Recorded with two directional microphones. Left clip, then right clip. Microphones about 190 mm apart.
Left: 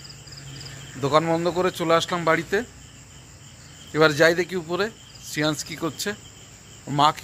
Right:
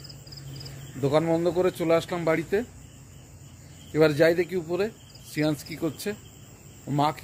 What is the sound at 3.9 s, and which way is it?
Speech, 5° right (ahead or behind).